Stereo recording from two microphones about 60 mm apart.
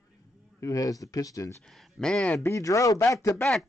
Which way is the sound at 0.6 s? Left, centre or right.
Left.